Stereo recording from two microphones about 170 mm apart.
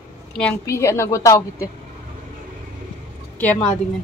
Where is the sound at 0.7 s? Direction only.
15° left (ahead or behind).